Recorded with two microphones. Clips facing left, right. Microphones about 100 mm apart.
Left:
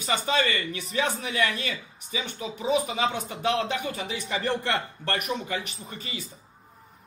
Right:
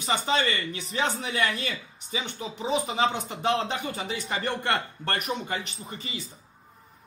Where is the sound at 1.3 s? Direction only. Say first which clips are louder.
Even; 35° right (ahead or behind).